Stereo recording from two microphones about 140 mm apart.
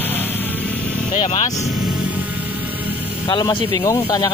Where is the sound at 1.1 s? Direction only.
65° left (ahead or behind).